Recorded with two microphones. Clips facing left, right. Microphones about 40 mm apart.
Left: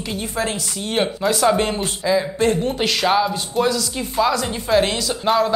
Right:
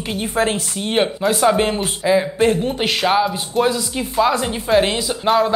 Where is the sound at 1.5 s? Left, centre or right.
Centre.